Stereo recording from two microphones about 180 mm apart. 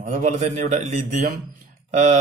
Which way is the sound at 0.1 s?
40° right (ahead or behind).